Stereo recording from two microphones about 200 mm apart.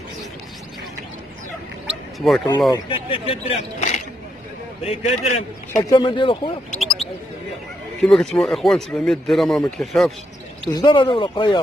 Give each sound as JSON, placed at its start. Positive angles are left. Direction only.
{"t": 2.1, "sound": "speech", "side_deg": 0}
{"t": 2.7, "sound": "a man's voice", "side_deg": 25}
{"t": 5.8, "sound": "speech", "side_deg": 20}
{"t": 6.8, "sound": "a sound", "side_deg": 0}
{"t": 8.0, "sound": "speech", "side_deg": 5}
{"t": 10.7, "sound": "speech", "side_deg": 20}